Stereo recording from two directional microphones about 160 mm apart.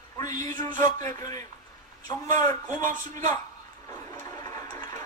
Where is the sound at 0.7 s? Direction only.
55° right (ahead or behind).